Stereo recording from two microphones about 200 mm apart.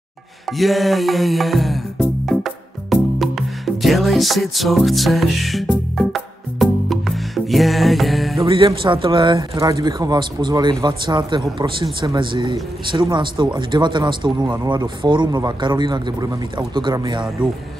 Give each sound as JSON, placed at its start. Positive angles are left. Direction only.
{"t": 0.5, "sound": "music", "side_deg": 0}
{"t": 8.4, "sound": "speech", "side_deg": -25}